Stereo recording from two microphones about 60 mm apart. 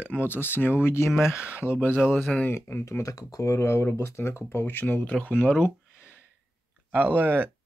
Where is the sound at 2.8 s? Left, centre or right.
Left.